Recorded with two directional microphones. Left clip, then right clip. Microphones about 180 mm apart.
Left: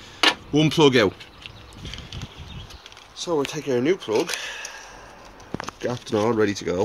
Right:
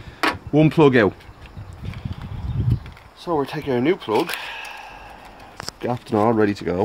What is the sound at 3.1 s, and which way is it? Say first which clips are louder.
Speech: right 1 dB; 35° right (ahead or behind).